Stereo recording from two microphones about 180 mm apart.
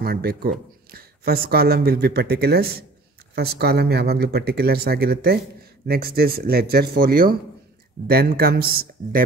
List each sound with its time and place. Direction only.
0.0 s speech: 60° right (ahead or behind)